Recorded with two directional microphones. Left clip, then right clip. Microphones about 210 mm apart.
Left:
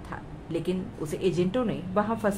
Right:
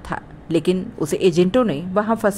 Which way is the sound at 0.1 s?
35° right (ahead or behind).